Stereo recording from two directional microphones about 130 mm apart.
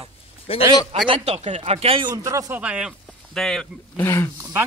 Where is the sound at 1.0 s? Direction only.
45° right (ahead or behind).